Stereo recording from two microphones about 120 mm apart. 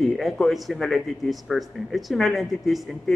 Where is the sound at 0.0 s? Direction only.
Centre (ahead or behind).